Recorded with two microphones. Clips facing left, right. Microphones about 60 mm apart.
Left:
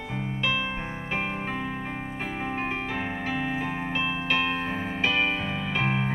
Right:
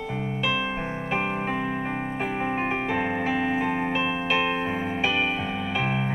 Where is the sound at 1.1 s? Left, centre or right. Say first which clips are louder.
Right 3 dB; centre.